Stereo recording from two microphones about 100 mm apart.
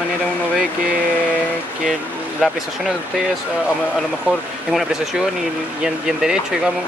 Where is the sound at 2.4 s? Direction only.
5° right (ahead or behind).